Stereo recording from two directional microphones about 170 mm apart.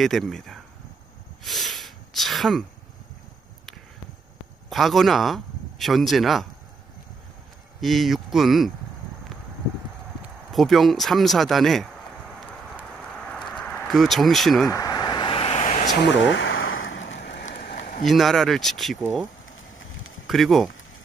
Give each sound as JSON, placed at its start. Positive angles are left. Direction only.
{"t": 0.0, "sound": "speech", "side_deg": 0}
{"t": 1.4, "sound": "a sound", "side_deg": 0}
{"t": 4.6, "sound": "speech", "side_deg": 0}
{"t": 7.8, "sound": "speech", "side_deg": 0}
{"t": 10.5, "sound": "speech", "side_deg": 0}
{"t": 13.3, "sound": "a sound", "side_deg": 5}
{"t": 14.7, "sound": "vehicle", "side_deg": 20}
{"t": 16.0, "sound": "speech", "side_deg": 90}
{"t": 17.1, "sound": "rain on surface", "side_deg": 75}
{"t": 17.5, "sound": "a sound", "side_deg": 55}
{"t": 18.0, "sound": "speech", "side_deg": 0}
{"t": 20.2, "sound": "speech", "side_deg": 0}